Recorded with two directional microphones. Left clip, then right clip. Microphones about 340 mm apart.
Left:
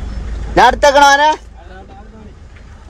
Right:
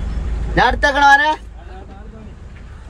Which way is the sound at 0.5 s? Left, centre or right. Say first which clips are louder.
Left 6 dB; left.